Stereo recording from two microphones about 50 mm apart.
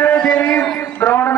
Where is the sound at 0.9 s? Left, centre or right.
Left.